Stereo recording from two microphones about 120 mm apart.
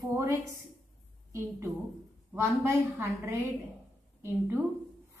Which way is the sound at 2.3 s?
20° right (ahead or behind).